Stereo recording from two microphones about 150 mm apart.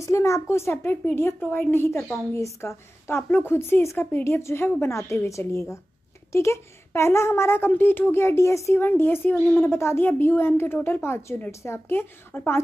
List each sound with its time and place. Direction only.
0.0 s speech: 20° left (ahead or behind)